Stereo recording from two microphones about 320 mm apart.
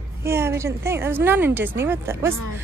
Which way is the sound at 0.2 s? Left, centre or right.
Centre.